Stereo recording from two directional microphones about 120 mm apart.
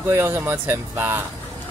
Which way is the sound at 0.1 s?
20° right (ahead or behind).